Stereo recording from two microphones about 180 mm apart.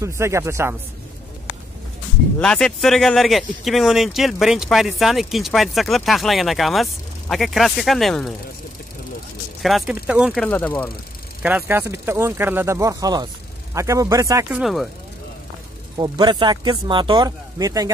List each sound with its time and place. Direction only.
0.0 s speech: 15° right (ahead or behind)
2.3 s speech: 5° left (ahead or behind)
9.6 s speech: centre (ahead or behind)
10.3 s speech: 5° left (ahead or behind)
11.4 s speech: 10° right (ahead or behind)
14.6 s speech: centre (ahead or behind)
16.0 s speech: 25° right (ahead or behind)